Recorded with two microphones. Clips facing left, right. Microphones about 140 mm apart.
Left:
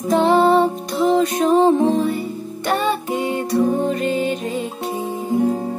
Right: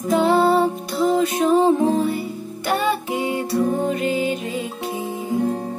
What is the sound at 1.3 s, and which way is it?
Music, 35° left (ahead or behind).